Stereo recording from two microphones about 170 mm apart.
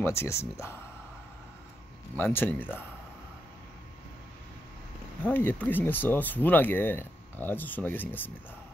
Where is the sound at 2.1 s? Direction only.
10° left (ahead or behind).